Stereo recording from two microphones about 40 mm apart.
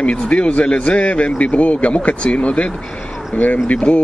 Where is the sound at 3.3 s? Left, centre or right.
Left.